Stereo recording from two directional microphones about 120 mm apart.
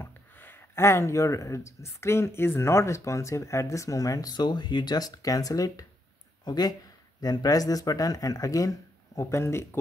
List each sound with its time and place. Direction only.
0.0 s speech: 15° left (ahead or behind)